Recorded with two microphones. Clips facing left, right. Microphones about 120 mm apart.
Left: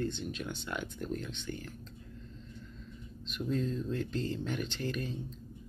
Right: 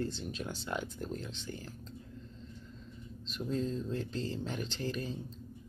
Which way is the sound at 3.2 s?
35° right (ahead or behind).